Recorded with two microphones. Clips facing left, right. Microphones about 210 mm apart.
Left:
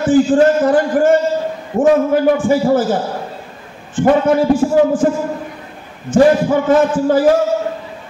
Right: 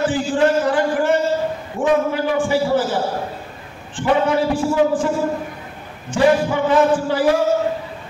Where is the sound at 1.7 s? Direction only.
45° left (ahead or behind).